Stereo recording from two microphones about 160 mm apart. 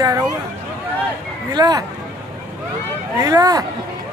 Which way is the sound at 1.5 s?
25° right (ahead or behind).